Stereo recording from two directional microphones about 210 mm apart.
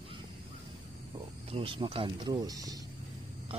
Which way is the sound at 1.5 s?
25° right (ahead or behind).